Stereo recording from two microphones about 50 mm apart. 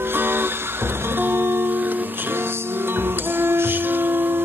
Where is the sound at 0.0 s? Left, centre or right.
Right.